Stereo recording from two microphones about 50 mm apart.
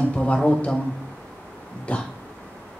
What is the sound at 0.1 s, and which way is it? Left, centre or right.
Speech, centre.